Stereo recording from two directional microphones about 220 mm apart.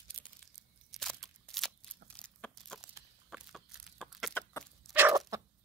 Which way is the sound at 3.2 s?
Centre (ahead or behind).